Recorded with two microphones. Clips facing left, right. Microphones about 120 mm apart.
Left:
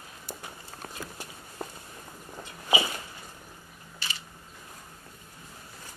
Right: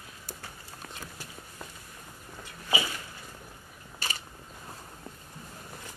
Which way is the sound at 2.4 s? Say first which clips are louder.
Left 4 dB; 20° left (ahead or behind).